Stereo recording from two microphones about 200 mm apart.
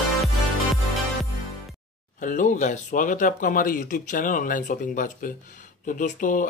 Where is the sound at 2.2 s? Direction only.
40° left (ahead or behind).